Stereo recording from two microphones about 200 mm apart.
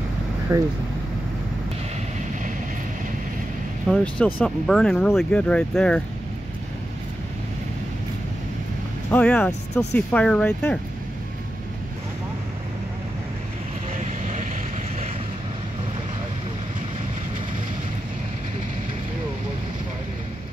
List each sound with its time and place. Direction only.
0.5 s speech: 15° right (ahead or behind)
3.9 s speech: 5° left (ahead or behind)
9.1 s speech: 5° left (ahead or behind)